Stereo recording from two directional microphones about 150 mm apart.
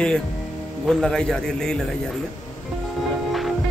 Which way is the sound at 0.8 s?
5° left (ahead or behind).